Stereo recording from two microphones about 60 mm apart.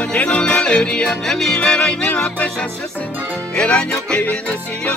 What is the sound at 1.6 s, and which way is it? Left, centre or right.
Music, centre.